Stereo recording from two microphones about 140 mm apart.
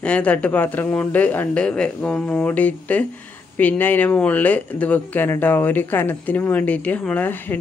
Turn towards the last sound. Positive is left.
turn(degrees=15)  # may be behind; listen again after turning